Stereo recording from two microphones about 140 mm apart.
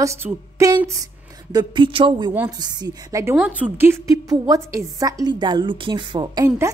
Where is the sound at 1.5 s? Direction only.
30° right (ahead or behind).